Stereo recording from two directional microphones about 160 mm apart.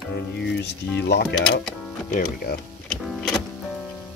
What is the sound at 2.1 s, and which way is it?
Speech, 70° left (ahead or behind).